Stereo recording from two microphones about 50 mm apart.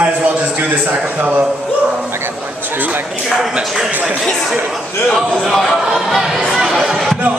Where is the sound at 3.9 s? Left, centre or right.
Right.